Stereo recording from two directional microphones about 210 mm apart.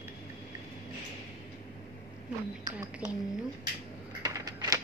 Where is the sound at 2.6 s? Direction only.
15° right (ahead or behind).